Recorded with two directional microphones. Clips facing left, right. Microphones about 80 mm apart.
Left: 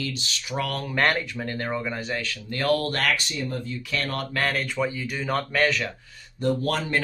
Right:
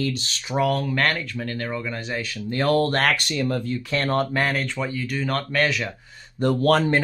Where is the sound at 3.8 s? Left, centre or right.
Right.